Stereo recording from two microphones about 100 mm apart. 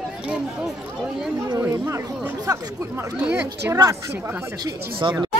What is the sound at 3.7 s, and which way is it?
Speech, 30° right (ahead or behind).